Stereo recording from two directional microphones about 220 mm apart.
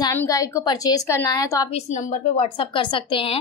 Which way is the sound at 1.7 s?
30° left (ahead or behind).